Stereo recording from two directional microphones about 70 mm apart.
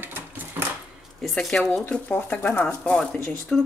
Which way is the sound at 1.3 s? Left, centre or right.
Centre.